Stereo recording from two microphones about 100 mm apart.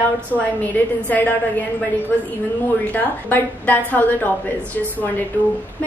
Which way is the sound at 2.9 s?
20° left (ahead or behind).